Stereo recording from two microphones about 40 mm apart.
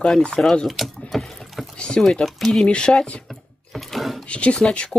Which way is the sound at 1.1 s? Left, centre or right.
Centre.